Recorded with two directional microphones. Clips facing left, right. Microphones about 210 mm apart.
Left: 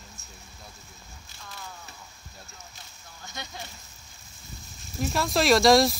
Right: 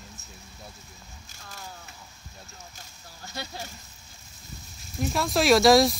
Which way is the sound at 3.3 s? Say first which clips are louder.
Right 3 dB; 35° right (ahead or behind).